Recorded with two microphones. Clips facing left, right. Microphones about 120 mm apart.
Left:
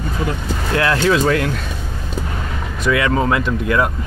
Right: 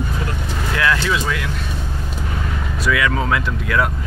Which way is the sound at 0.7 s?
40° left (ahead or behind).